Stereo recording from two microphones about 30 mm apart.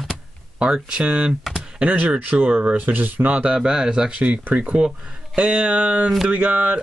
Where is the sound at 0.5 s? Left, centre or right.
Right.